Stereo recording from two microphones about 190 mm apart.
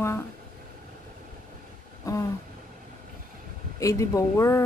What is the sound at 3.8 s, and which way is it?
Speech, 15° left (ahead or behind).